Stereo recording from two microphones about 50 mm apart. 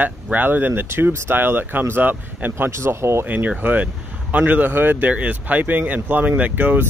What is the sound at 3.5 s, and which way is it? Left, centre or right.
Speech, right.